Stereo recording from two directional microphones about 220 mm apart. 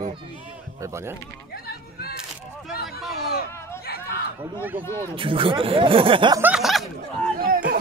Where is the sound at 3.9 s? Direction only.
45° left (ahead or behind).